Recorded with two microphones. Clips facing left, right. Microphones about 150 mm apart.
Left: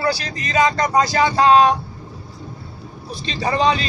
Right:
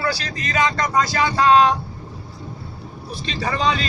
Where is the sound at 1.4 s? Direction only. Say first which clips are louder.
Left 1 dB; 20° left (ahead or behind).